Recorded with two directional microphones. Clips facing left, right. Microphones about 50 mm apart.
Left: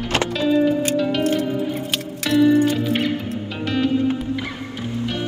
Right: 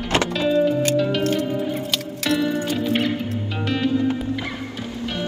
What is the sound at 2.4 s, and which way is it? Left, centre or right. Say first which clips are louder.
Music: left 7 dB; left.